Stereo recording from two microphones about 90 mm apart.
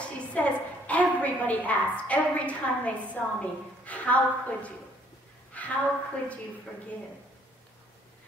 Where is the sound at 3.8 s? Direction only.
15° left (ahead or behind).